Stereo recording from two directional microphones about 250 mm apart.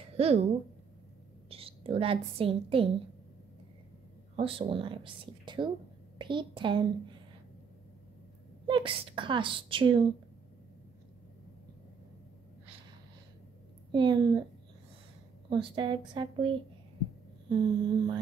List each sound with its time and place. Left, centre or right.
0.2 s a woman's voice: right
1.5 s a woman's voice: right
4.4 s a woman's voice: right
8.6 s a woman's voice: centre
13.9 s a sound: centre
15.5 s a woman's voice: centre
17.5 s a sound: centre